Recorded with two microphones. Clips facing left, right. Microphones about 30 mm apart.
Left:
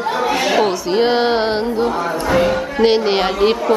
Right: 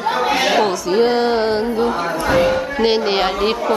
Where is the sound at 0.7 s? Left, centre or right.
Centre.